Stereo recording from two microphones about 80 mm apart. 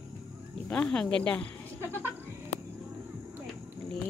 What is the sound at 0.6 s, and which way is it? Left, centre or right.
Speech, centre.